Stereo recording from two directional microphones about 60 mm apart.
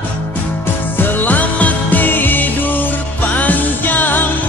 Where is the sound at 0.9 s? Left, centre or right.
Left.